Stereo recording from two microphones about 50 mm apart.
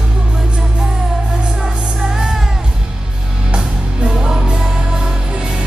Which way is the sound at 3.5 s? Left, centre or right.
Centre.